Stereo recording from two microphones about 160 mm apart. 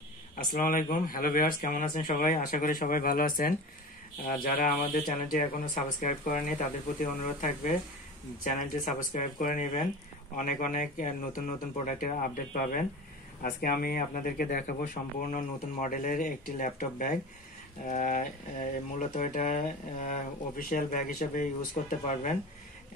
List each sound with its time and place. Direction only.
0.4 s speech: 60° left (ahead or behind)
15.3 s speech: 55° left (ahead or behind)